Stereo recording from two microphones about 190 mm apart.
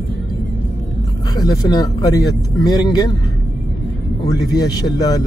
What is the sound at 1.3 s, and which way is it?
Speech, 20° left (ahead or behind).